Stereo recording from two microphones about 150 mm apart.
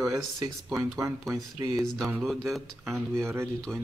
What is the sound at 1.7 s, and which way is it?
Speech, centre (ahead or behind).